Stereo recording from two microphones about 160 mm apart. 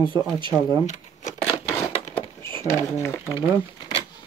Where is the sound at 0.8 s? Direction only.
50° left (ahead or behind).